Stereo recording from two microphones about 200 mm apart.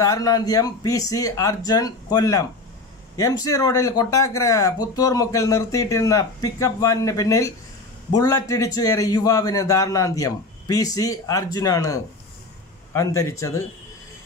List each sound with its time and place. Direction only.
0.0 s speech: 15° left (ahead or behind)